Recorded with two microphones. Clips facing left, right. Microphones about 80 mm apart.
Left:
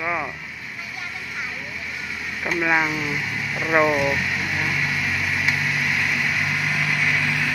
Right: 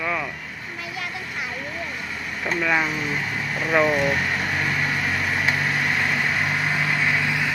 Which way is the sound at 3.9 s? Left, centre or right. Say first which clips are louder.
Even; right.